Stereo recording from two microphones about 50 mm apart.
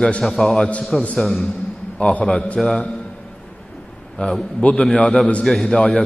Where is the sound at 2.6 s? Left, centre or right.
Centre.